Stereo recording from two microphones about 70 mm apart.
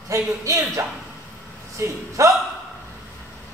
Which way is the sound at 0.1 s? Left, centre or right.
Right.